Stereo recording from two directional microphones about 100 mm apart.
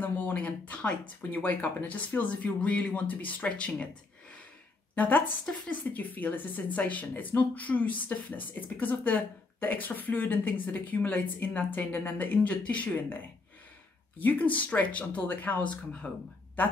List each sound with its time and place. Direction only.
0.0 s speech: 15° left (ahead or behind)
4.9 s speech: 15° left (ahead or behind)